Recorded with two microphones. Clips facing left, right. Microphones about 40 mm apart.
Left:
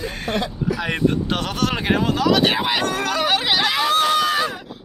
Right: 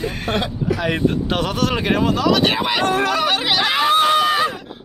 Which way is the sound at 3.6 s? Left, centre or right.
Right.